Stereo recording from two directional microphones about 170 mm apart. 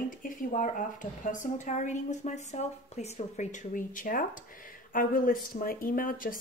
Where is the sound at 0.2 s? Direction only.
50° left (ahead or behind).